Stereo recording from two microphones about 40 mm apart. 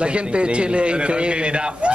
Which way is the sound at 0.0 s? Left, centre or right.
Right.